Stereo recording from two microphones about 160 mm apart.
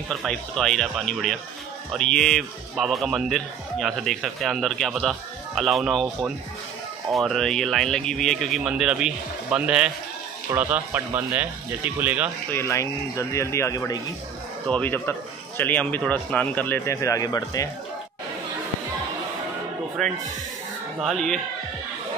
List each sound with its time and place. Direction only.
0.1 s a man's voice: centre (ahead or behind)
12.4 s speech: 15° left (ahead or behind)
20.0 s a man's voice: centre (ahead or behind)